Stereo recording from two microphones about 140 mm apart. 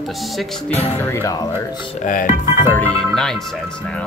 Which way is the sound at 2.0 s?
75° left (ahead or behind).